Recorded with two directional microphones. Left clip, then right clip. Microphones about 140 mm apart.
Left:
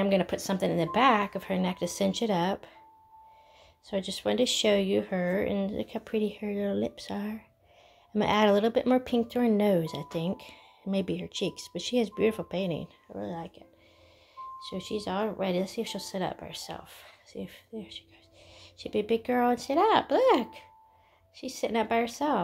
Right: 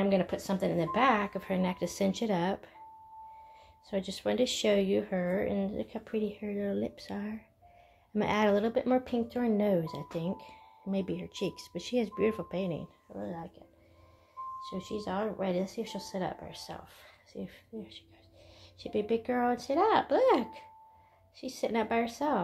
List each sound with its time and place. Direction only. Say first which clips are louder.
0.0 s speech: left 3 dB; 50° left (ahead or behind); by 2.7 s 35° left (ahead or behind)
3.9 s speech: left 3 dB; 35° left (ahead or behind)
13.1 s speech: left 3 dB; 70° left (ahead or behind)
14.6 s speech: left 7 dB; 65° left (ahead or behind); by 22.4 s 35° left (ahead or behind)